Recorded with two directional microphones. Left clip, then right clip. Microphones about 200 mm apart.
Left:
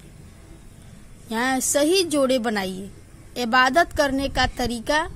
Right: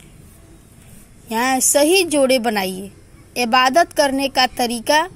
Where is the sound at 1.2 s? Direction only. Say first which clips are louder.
Right 5 dB; 20° right (ahead or behind).